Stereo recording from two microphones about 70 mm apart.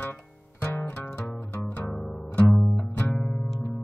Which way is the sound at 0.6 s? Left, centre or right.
Left.